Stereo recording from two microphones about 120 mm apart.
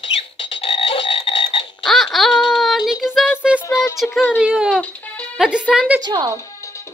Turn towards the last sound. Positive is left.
turn(degrees=-35)  # may be behind; listen again after turning